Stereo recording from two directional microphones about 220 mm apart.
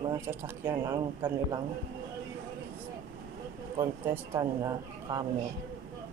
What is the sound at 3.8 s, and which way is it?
Speech, 15° right (ahead or behind).